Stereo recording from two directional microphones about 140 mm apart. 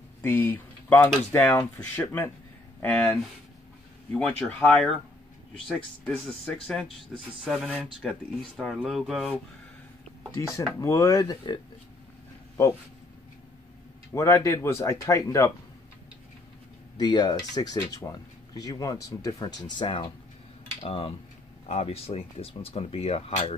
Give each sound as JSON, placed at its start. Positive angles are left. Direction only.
{"t": 0.2, "sound": "speech", "side_deg": 15}
{"t": 10.8, "sound": "speech", "side_deg": 20}
{"t": 14.1, "sound": "speech", "side_deg": 20}
{"t": 16.9, "sound": "speech", "side_deg": 30}